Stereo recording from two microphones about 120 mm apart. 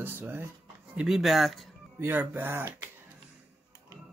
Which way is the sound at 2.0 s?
15° right (ahead or behind).